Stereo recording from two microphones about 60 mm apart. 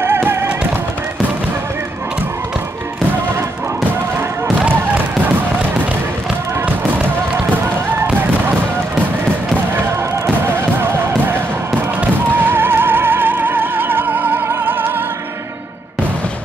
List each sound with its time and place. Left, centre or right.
0.0 s music: right
4.6 s a sound: right
10.4 s music: right
12.4 s music: right